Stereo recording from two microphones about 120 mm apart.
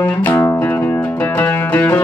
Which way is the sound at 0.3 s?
20° left (ahead or behind).